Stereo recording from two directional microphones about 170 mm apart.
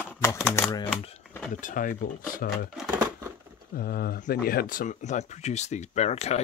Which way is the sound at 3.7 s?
60° left (ahead or behind).